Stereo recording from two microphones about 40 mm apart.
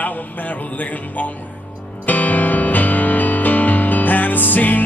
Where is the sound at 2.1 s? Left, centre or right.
Left.